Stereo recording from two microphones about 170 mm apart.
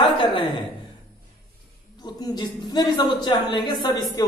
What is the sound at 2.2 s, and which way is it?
Speech, 25° left (ahead or behind).